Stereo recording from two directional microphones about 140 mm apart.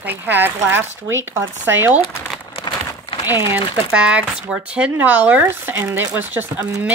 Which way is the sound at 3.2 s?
30° left (ahead or behind).